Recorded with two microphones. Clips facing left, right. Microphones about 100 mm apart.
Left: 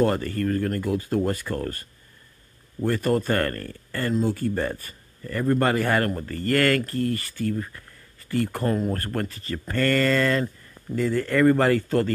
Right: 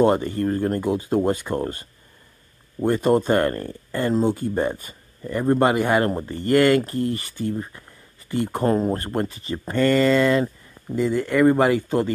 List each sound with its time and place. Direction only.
0.0 s speech: 20° right (ahead or behind)